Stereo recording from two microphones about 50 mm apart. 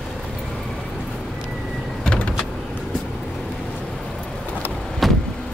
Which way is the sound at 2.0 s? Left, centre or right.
Left.